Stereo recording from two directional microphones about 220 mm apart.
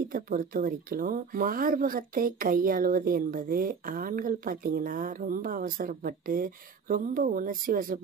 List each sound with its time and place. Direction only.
0.1 s speech: 40° right (ahead or behind)